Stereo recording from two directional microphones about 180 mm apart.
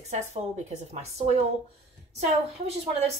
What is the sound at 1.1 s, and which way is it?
Speech, 35° right (ahead or behind).